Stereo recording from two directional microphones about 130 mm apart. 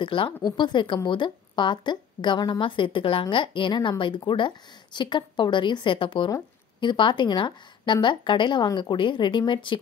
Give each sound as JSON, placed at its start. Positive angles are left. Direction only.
{"t": 0.0, "sound": "a woman's voice", "side_deg": 40}